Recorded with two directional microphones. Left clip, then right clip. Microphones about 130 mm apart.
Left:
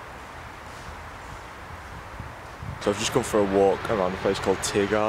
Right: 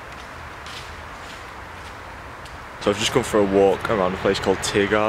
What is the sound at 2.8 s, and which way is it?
Speech, centre (ahead or behind).